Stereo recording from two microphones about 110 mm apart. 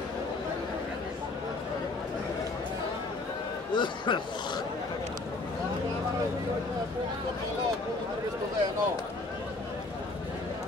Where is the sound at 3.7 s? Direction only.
45° left (ahead or behind).